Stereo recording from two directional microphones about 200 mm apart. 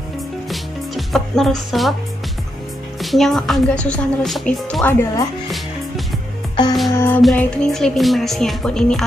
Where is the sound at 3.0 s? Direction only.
Centre (ahead or behind).